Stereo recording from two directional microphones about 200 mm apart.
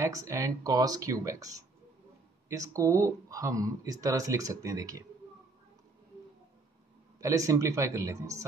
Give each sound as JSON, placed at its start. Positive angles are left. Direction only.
{"t": 0.0, "sound": "speech", "side_deg": -15}
{"t": 7.2, "sound": "speech", "side_deg": -15}